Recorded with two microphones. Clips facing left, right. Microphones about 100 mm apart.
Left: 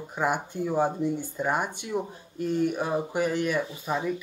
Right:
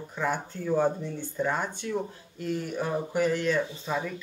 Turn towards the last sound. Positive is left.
turn(degrees=20)  # may be behind; listen again after turning